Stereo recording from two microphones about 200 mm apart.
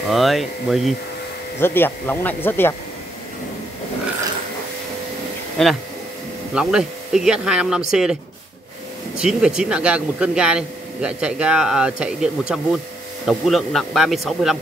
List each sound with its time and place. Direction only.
0.1 s speech: centre (ahead or behind)
1.6 s speech: 10° left (ahead or behind)
5.6 s speech: 5° left (ahead or behind)